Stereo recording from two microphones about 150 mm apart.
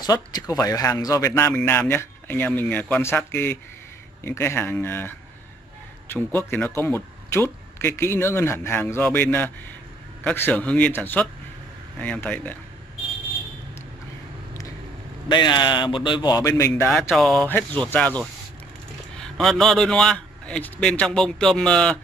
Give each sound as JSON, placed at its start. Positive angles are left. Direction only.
{"t": 0.0, "sound": "speech", "side_deg": 25}
{"t": 15.2, "sound": "a man's voice", "side_deg": 30}
{"t": 17.1, "sound": "a man's voice", "side_deg": 0}
{"t": 17.8, "sound": "a man's voice", "side_deg": 10}